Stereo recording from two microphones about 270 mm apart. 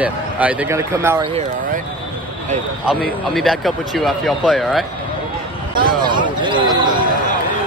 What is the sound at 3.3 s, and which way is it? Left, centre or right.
Speech, centre.